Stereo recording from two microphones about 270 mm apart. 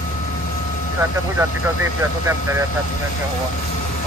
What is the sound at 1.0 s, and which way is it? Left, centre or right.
Speech, centre.